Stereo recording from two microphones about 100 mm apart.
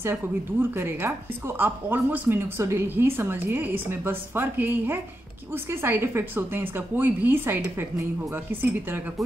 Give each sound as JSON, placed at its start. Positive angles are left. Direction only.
{"t": 0.0, "sound": "a woman's voice", "side_deg": -20}